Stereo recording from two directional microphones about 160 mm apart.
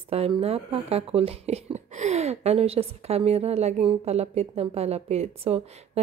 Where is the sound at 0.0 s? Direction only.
40° right (ahead or behind).